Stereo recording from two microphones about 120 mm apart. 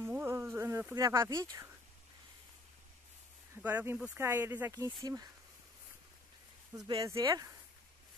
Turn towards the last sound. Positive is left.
turn(degrees=-30)  # may be behind; listen again after turning